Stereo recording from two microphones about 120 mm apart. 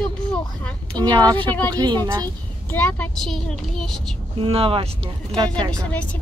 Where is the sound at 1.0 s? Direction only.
35° right (ahead or behind).